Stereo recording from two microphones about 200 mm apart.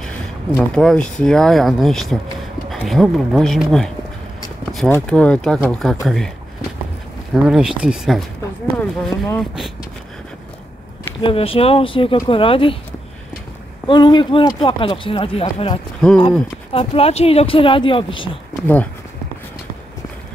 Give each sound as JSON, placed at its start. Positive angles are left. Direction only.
{"t": 0.0, "sound": "speech", "side_deg": 5}
{"t": 7.4, "sound": "speech", "side_deg": -5}
{"t": 11.2, "sound": "speech", "side_deg": 30}
{"t": 13.8, "sound": "speech", "side_deg": 25}